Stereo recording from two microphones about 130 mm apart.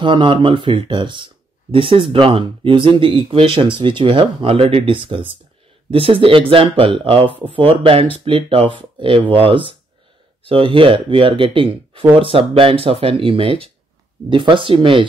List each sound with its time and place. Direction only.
0.0 s speech: 40° right (ahead or behind)